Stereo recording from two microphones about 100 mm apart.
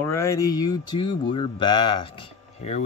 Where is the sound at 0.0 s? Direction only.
25° left (ahead or behind).